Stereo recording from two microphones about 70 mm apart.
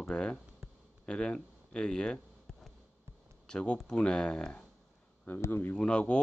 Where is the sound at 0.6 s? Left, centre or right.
Centre.